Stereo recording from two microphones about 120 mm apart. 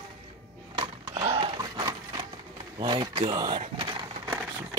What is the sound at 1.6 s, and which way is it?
Wood, 35° right (ahead or behind).